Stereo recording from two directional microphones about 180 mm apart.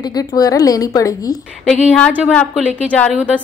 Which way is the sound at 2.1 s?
5° right (ahead or behind).